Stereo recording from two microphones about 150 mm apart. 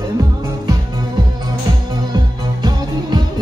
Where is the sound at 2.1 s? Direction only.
25° right (ahead or behind).